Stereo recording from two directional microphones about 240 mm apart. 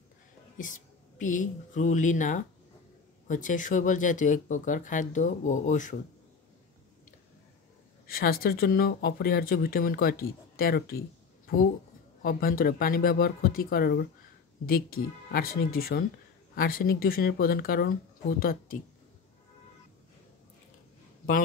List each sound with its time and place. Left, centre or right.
0.6 s speech: left
8.1 s speech: left
12.2 s speech: left